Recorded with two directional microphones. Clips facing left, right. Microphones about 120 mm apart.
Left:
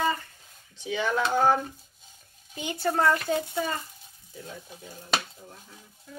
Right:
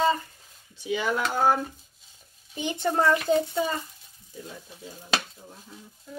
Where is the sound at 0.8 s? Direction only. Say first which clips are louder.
Even; 5° right (ahead or behind).